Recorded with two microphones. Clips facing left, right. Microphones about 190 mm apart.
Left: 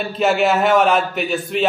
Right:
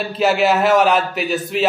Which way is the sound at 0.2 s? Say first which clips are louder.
Right 1 dB; centre (ahead or behind).